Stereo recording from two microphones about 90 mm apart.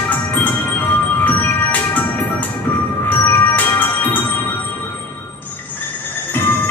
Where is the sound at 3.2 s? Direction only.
20° left (ahead or behind).